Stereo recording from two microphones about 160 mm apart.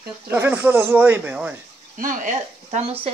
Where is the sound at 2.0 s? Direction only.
55° right (ahead or behind).